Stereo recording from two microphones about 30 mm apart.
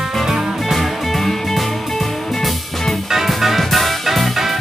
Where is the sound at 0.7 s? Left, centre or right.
Centre.